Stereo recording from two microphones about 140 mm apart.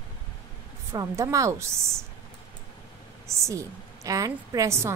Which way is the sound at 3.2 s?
20° right (ahead or behind).